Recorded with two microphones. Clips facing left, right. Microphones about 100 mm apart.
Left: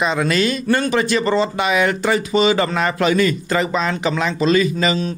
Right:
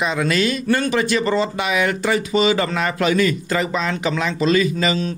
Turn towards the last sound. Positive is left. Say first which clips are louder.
# left 1 dB
turn(degrees=35)  # may be behind; listen again after turning